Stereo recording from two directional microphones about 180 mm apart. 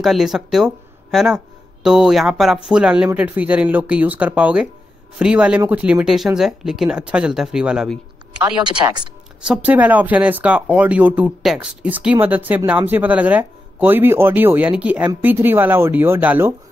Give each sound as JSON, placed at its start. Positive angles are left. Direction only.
{"t": 0.0, "sound": "speech", "side_deg": 0}
{"t": 9.5, "sound": "speech", "side_deg": -10}